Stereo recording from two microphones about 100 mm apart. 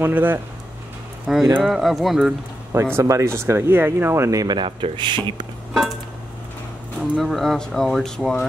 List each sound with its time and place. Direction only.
0.0 s speech: 20° right (ahead or behind)
1.2 s speech: centre (ahead or behind)
2.7 s speech: 30° right (ahead or behind)
4.6 s speech: 55° right (ahead or behind)
7.0 s speech: centre (ahead or behind)